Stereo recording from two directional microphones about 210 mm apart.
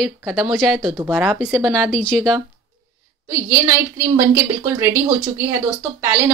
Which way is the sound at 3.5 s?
10° right (ahead or behind).